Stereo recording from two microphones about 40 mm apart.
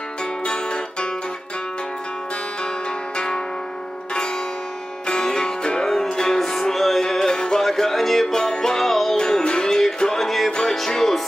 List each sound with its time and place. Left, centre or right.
0.5 s music: left
3.2 s music: centre
5.0 s music: centre
7.6 s music: centre
8.4 s music: centre
8.8 s music: centre
9.1 s music: centre
10.2 s music: centre